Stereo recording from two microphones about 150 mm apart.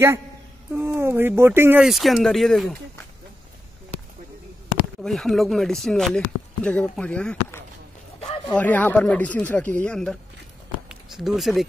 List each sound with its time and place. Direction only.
0.7 s speech: 15° right (ahead or behind)
1.9 s speech: centre (ahead or behind)
5.0 s speech: centre (ahead or behind)
10.9 s a sound: centre (ahead or behind)